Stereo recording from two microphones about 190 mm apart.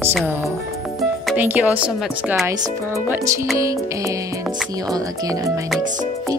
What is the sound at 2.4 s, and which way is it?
Speech, 15° right (ahead or behind).